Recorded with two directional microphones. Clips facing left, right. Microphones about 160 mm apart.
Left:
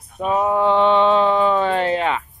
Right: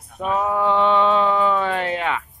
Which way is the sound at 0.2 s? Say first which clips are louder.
Left 3 dB; 20° left (ahead or behind).